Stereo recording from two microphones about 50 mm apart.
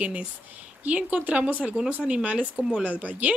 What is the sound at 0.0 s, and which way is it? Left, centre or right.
Speech, right.